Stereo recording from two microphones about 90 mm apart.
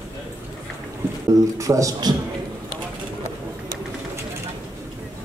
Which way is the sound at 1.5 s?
35° right (ahead or behind).